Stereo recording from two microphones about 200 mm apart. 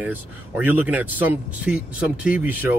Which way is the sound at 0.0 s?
10° right (ahead or behind).